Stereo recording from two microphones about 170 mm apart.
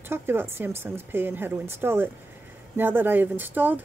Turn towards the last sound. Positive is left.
turn(degrees=-10)  # may be behind; listen again after turning